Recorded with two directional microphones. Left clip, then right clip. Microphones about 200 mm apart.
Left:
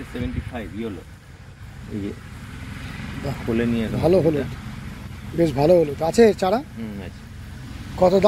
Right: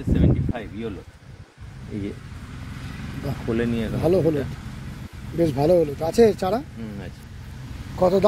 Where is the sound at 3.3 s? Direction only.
Centre (ahead or behind).